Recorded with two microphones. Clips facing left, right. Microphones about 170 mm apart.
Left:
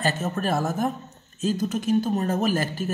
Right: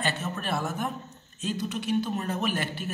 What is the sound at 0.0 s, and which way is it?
Speech, 40° left (ahead or behind).